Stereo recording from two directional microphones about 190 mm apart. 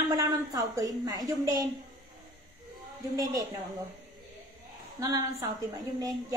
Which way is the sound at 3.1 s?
20° right (ahead or behind).